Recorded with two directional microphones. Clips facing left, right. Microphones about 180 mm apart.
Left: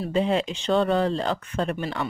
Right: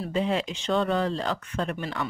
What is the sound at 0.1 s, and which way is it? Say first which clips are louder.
Speech: left 3 dB; 30° left (ahead or behind).